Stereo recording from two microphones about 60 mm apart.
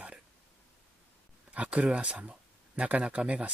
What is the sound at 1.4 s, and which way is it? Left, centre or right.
Speech, right.